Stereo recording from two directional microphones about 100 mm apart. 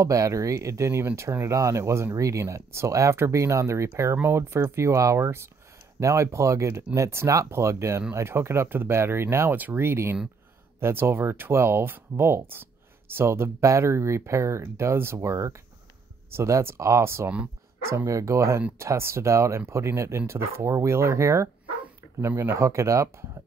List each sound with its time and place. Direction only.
0.0 s speech: 35° right (ahead or behind)